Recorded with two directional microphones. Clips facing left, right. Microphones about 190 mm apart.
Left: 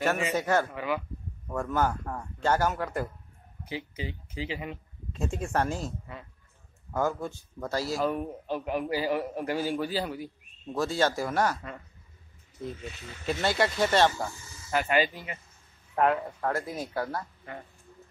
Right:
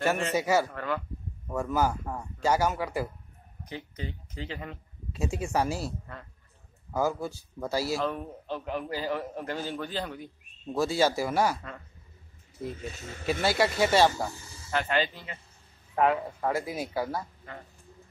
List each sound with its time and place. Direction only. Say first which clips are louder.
0.4 s speech: right 2 dB; 10° right (ahead or behind)
0.7 s a man's voice: left 1 dB; 10° left (ahead or behind)
1.5 s speech: right 1 dB; 5° right (ahead or behind)
3.6 s a man's voice: left 2 dB; 5° left (ahead or behind)
5.1 s speech: right 1 dB; 5° right (ahead or behind)
6.9 s a man's voice: right 1 dB; 5° right (ahead or behind)
8.0 s a man's voice: left 3 dB; 10° left (ahead or behind)
10.7 s speech: right 2 dB; 5° right (ahead or behind)
13.3 s speech: right 1 dB; 5° right (ahead or behind)
14.3 s speech: right 2 dB; 35° right (ahead or behind)
14.7 s a man's voice: left 2 dB; 10° left (ahead or behind)
15.9 s speech: even; centre (ahead or behind)